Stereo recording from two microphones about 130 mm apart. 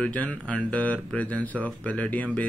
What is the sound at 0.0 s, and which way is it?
Speech, 10° left (ahead or behind).